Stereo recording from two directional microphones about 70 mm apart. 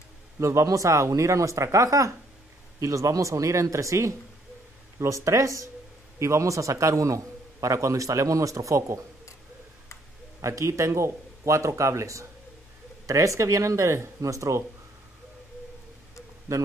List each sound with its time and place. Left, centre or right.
0.4 s a man's voice: right
10.4 s a man's voice: right
16.5 s a man's voice: right